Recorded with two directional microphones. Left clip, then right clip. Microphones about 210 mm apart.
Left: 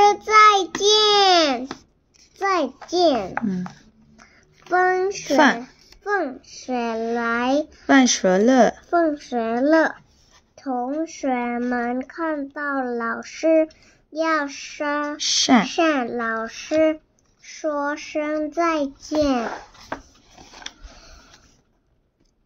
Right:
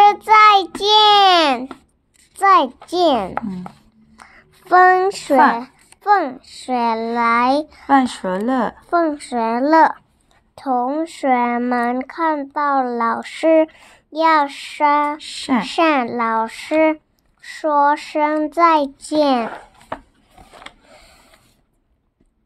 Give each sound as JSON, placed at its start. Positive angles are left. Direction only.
{"t": 0.0, "sound": "child singing", "side_deg": -30}
{"t": 2.3, "sound": "a sound", "side_deg": -35}
{"t": 2.9, "sound": "speech", "side_deg": -35}
{"t": 4.2, "sound": "a sound", "side_deg": -35}
{"t": 5.6, "sound": "a child's voice", "side_deg": -35}
{"t": 7.8, "sound": "speech", "side_deg": 15}
{"t": 8.9, "sound": "a child's voice", "side_deg": -25}
{"t": 10.5, "sound": "speech", "side_deg": -35}
{"t": 15.2, "sound": "speech", "side_deg": 15}
{"t": 15.7, "sound": "speech", "side_deg": -40}